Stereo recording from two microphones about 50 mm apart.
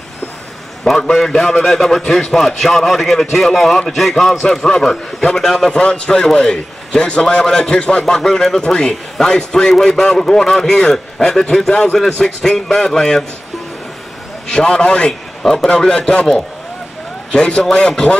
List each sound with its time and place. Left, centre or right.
0.8 s a man's voice: centre
5.8 s a man's voice: left
14.5 s a man's voice: centre
15.4 s a man's voice: centre
17.3 s a man's voice: centre